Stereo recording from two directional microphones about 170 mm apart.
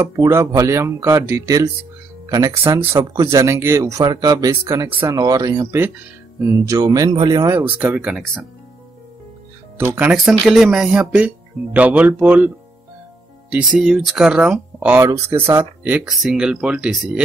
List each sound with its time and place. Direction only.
0.0 s speech: 20° right (ahead or behind)
9.8 s speech: 10° right (ahead or behind)
13.7 s speech: centre (ahead or behind)